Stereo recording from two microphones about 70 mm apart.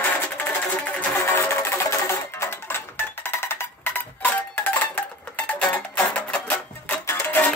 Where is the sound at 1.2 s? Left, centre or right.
Left; by 6.0 s centre.